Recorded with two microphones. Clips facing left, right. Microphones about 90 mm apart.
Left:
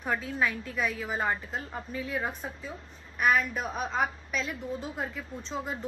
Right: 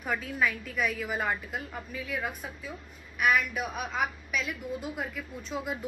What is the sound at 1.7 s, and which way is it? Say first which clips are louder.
A woman's voice: left 2 dB; 30° left (ahead or behind).